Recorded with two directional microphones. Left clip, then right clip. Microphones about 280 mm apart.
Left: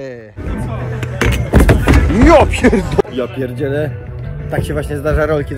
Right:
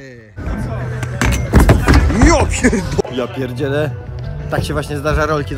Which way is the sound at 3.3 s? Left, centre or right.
Centre.